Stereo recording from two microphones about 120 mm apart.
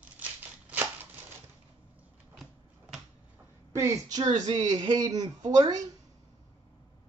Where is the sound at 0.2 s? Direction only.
15° right (ahead or behind).